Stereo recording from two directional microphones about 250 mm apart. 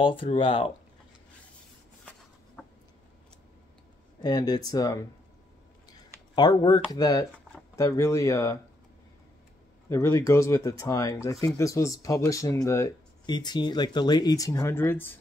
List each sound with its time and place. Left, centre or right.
0.0 s speech: centre
2.6 s a sound: centre
4.2 s speech: centre
9.8 s speech: centre